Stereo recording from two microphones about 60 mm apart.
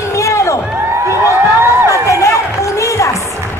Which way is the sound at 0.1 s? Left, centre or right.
Left.